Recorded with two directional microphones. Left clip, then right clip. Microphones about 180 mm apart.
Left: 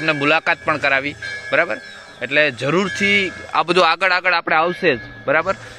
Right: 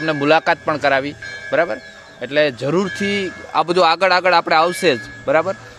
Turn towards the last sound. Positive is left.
turn(degrees=-10)  # may be behind; listen again after turning